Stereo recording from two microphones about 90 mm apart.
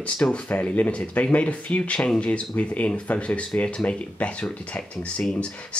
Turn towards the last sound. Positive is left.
turn(degrees=10)  # may be behind; listen again after turning